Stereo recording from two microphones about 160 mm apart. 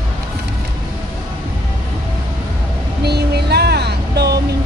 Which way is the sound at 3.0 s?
90° right.